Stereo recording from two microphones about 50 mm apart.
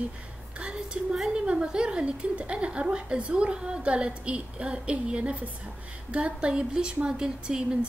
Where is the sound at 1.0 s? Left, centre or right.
Centre.